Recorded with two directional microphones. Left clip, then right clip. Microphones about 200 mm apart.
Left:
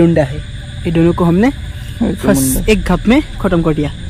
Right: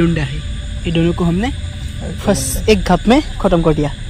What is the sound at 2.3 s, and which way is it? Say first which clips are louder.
Speech: even; 10° left (ahead or behind).